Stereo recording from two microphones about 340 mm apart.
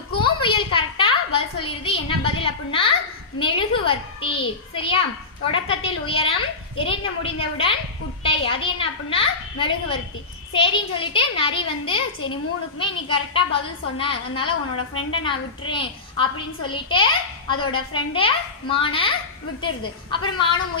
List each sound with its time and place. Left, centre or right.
0.2 s a sound: centre
5.5 s a child's voice: centre
14.8 s a woman's voice: left
15.2 s a child's voice: centre